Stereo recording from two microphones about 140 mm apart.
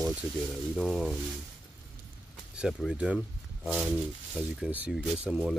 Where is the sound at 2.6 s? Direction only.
5° right (ahead or behind).